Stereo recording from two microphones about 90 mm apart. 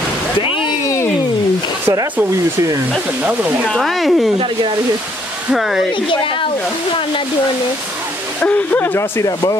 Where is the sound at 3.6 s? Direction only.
Centre (ahead or behind).